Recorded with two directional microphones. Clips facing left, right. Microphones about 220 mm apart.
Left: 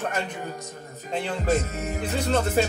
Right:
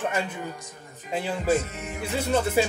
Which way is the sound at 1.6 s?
40° left (ahead or behind).